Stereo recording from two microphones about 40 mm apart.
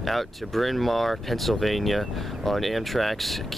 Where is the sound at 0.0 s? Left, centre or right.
Centre.